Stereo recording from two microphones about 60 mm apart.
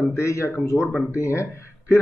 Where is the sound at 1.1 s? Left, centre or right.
Left.